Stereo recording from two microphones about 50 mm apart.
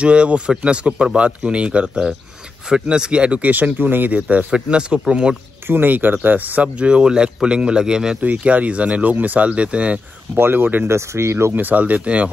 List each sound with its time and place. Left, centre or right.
0.0 s speech: right
5.7 s speech: right
6.8 s a man's voice: right
8.2 s speech: right
10.3 s speech: right
10.9 s speech: right
11.5 s speech: right